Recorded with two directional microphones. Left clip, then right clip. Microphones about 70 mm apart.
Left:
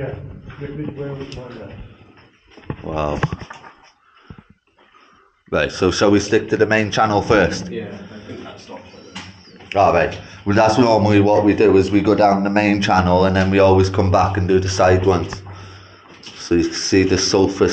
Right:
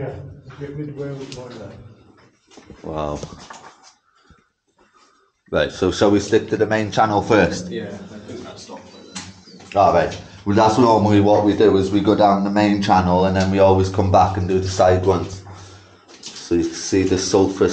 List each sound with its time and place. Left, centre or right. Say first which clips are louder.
2.8 s speech: left 3 dB; left
5.5 s speech: left 1 dB; left
9.7 s speech: even; left
16.4 s speech: left 3 dB; left